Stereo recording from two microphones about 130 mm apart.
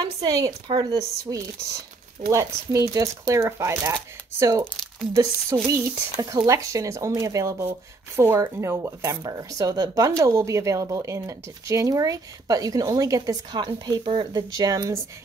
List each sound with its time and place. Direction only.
0.0 s speech: 30° right (ahead or behind)
2.3 s speech: 25° right (ahead or behind)